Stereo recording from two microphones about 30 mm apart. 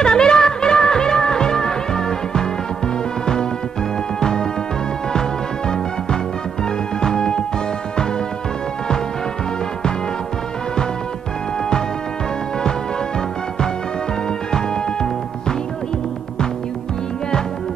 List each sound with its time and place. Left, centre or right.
0.0 s music: left
4.2 s music: left
7.0 s music: left